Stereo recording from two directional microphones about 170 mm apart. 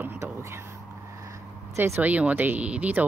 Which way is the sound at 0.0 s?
15° right (ahead or behind).